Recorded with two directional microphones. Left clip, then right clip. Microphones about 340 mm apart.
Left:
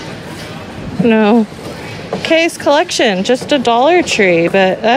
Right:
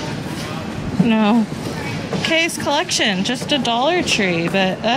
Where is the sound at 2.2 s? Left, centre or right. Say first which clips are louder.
Left 6 dB; centre.